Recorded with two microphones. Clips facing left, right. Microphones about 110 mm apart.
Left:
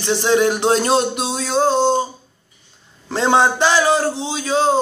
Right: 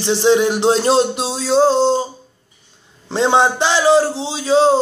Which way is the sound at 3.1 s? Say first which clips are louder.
Right 1 dB; 25° right (ahead or behind).